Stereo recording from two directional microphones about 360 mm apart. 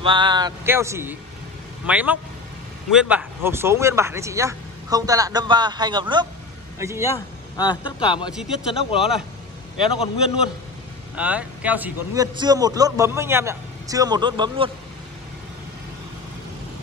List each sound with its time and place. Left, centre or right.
0.0 s a man's voice: centre
7.2 s speech: centre
8.3 s speech: centre
8.7 s speech: centre
11.1 s a man's voice: centre